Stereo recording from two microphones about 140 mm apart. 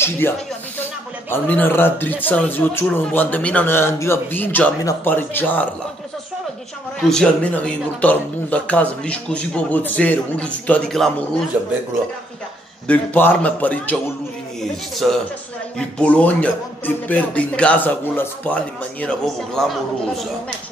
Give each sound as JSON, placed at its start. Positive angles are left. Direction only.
{"t": 0.2, "sound": "speech", "side_deg": 15}
{"t": 7.0, "sound": "speech", "side_deg": 5}
{"t": 12.8, "sound": "a man's voice", "side_deg": 10}